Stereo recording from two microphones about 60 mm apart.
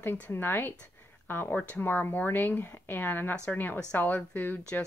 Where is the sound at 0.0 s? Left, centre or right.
Left.